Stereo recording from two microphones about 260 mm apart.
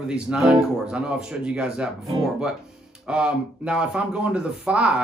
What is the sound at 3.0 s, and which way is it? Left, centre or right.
Speech, centre.